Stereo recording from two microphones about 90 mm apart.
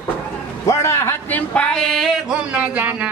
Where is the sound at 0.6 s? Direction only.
30° left (ahead or behind).